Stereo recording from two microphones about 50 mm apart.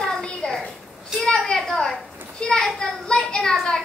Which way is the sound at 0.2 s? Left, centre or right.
Centre.